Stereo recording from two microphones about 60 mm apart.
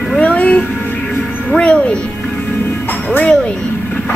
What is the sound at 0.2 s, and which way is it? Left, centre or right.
Cat, left.